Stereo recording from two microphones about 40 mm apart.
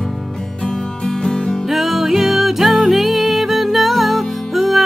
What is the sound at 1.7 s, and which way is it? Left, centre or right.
Music, centre.